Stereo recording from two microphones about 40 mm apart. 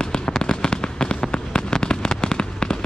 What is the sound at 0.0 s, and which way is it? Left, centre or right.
Fireworks, left.